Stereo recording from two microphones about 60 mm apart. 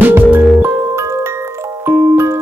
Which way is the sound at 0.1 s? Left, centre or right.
Right.